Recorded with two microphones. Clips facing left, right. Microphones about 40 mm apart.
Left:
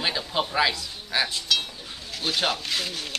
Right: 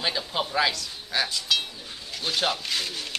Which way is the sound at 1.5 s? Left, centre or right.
Centre.